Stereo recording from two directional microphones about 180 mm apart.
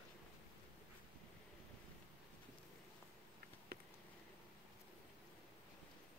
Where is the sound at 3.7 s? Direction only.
60° right (ahead or behind).